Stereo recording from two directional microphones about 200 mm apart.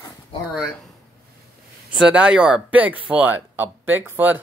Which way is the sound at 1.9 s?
5° right (ahead or behind).